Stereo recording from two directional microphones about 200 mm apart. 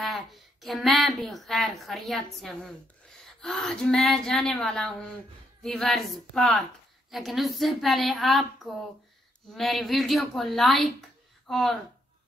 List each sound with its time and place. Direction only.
0.0 s a woman's voice: centre (ahead or behind)